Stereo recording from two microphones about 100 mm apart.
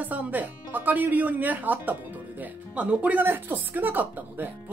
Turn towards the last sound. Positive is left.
turn(degrees=-20)  # may be behind; listen again after turning